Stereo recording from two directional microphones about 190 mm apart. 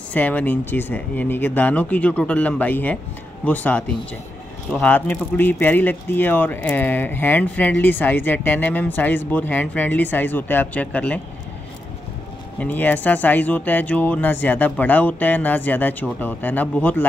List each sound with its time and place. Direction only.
0.1 s a man's voice: 10° left (ahead or behind)
12.5 s a man's voice: 10° left (ahead or behind)